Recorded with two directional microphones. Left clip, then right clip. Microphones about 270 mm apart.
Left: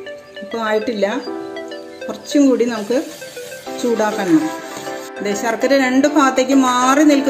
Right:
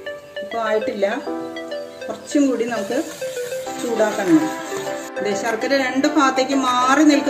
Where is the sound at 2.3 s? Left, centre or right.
Left.